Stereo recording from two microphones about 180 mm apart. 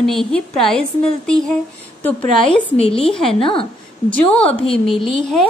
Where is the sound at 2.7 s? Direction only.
35° left (ahead or behind).